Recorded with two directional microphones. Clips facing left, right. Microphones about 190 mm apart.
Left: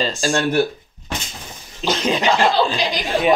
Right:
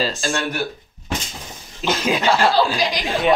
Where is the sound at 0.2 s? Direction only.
40° left (ahead or behind).